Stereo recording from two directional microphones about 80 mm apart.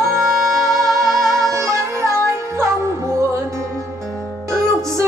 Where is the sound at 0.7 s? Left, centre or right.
Centre.